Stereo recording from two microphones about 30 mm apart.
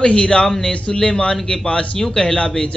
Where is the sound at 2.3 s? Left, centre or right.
Left.